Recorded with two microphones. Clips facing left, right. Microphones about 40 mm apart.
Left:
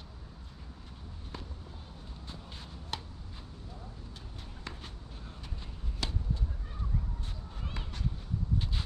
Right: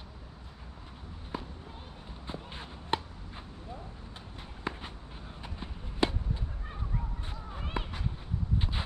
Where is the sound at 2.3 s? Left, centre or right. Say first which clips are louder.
Right 7 dB; right.